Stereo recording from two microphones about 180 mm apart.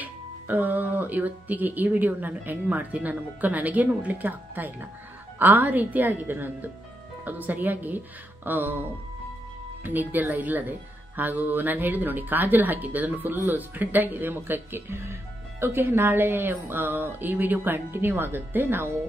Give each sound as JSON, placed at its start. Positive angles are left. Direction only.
{"t": 0.0, "sound": "speech", "side_deg": -10}
{"t": 9.8, "sound": "speech", "side_deg": -10}